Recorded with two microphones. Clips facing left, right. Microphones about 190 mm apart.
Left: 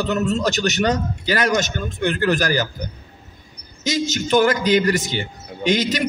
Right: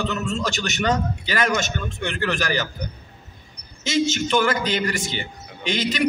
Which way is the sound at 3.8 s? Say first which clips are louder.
Right 1 dB; 40° left (ahead or behind).